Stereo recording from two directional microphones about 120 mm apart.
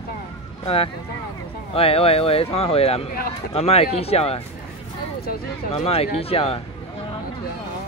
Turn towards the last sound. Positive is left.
turn(degrees=55)  # may be behind; listen again after turning